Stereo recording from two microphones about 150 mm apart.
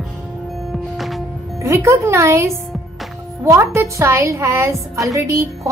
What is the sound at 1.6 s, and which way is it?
A woman's voice, 20° right (ahead or behind).